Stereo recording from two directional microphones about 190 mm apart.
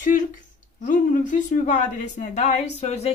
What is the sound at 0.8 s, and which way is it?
A woman's voice, 40° left (ahead or behind).